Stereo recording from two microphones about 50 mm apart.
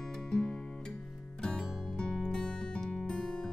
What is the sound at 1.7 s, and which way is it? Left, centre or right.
Music, centre.